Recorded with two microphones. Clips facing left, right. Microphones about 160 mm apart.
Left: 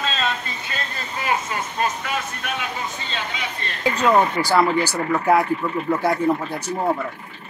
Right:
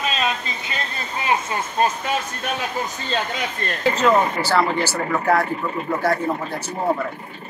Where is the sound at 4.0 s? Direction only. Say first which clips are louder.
Left 1 dB; 15° left (ahead or behind).